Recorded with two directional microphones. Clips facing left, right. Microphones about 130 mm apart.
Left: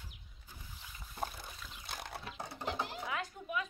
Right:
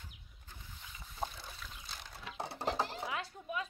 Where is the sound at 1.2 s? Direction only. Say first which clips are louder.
Even; 55° left (ahead or behind).